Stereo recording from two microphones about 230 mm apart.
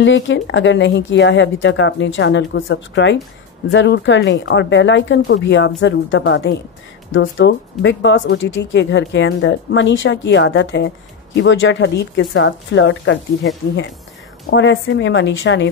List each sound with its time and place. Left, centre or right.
0.0 s speech: left
14.5 s speech: left